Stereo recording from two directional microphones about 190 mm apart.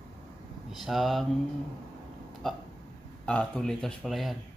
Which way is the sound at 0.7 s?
Centre (ahead or behind).